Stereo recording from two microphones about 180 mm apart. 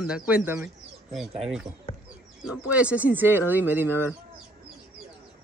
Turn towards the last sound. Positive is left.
turn(degrees=-10)  # may be behind; listen again after turning